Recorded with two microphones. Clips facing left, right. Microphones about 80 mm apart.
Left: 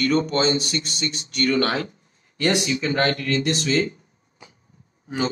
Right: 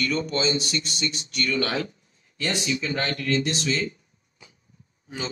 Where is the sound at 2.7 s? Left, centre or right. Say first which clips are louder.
Left 5 dB; left.